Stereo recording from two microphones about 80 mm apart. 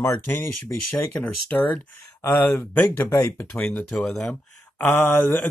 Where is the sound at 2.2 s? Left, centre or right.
Left.